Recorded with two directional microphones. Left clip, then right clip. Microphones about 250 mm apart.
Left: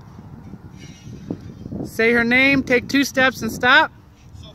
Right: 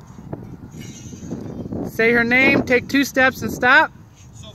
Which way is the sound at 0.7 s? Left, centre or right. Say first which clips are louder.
Right 4 dB; right.